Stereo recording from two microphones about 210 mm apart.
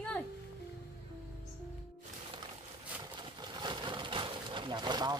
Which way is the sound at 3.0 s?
20° right (ahead or behind).